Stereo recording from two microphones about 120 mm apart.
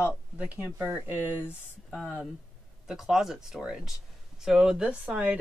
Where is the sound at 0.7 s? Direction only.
15° right (ahead or behind).